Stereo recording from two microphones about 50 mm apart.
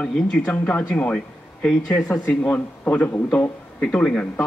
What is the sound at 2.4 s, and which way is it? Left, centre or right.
Speech, left.